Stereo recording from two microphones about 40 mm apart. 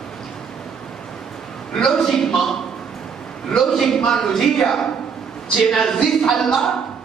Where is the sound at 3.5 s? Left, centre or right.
Centre.